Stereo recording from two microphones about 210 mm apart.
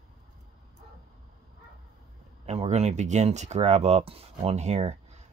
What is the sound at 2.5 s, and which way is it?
Speech, 30° right (ahead or behind).